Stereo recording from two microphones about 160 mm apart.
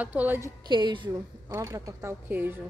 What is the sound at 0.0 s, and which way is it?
Speech, 10° right (ahead or behind).